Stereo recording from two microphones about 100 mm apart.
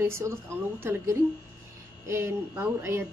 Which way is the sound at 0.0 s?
25° right (ahead or behind).